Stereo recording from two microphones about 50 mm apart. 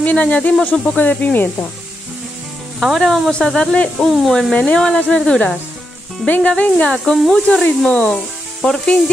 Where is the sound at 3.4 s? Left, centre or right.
Centre.